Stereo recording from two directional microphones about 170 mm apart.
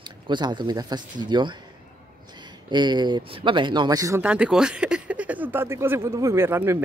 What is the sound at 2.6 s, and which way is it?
Speech, 25° right (ahead or behind).